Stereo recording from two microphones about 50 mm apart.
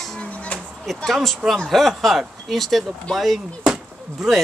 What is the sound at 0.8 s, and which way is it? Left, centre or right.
Speech, centre.